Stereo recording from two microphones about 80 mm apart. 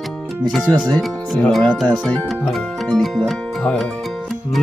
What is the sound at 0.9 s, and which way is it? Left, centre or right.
Speech, centre.